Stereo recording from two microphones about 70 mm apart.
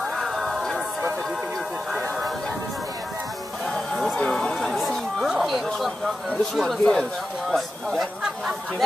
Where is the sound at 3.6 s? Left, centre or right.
Centre.